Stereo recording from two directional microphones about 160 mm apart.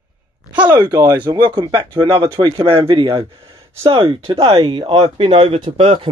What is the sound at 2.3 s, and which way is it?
A man's voice, 25° right (ahead or behind).